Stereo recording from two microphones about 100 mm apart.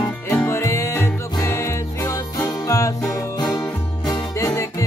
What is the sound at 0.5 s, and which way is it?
Music, 30° left (ahead or behind).